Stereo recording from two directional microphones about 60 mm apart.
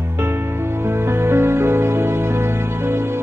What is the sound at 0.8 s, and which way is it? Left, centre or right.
Music, right.